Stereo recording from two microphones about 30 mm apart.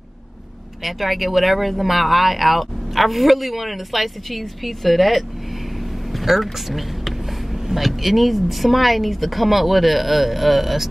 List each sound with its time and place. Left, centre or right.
0.8 s a woman's voice: centre
6.1 s vehicle: centre
7.8 s a woman's voice: centre